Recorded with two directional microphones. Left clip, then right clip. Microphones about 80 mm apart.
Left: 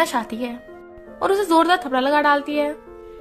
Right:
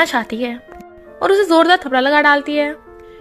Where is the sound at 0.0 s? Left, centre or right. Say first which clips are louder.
Right 5 dB; right.